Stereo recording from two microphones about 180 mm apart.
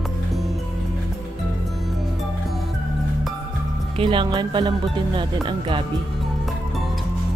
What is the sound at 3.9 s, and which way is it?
Speech, 25° right (ahead or behind).